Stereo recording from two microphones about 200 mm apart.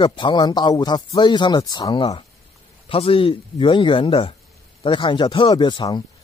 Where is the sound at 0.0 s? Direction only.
25° left (ahead or behind).